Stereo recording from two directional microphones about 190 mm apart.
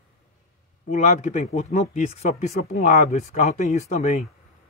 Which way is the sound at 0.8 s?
40° left (ahead or behind).